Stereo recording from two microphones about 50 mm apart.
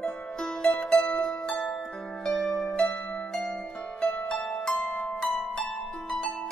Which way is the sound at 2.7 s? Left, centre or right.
Centre.